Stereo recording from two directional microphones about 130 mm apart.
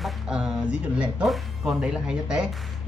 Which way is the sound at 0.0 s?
5° right (ahead or behind).